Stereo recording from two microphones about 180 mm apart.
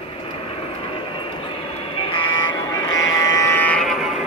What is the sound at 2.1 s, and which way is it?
Music, 25° left (ahead or behind).